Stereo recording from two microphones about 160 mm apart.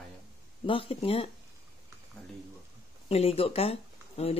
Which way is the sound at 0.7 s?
35° left (ahead or behind).